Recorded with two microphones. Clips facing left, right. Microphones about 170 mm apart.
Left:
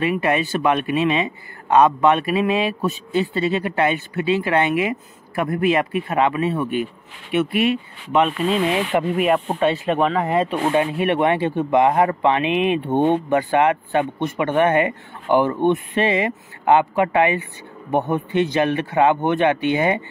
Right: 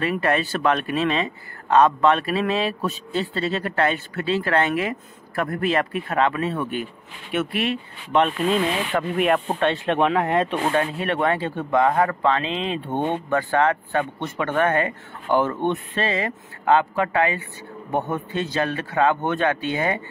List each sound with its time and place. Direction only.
0.0 s speech: 10° left (ahead or behind)